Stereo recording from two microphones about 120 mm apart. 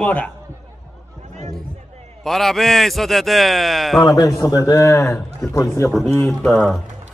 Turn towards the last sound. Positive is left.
turn(degrees=0)  # may be behind; listen again after turning